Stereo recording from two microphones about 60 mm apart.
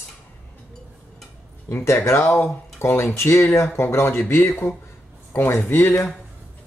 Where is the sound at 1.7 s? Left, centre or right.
Left.